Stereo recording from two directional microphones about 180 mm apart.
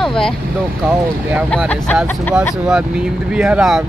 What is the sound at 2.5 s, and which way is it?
Speech, 5° right (ahead or behind).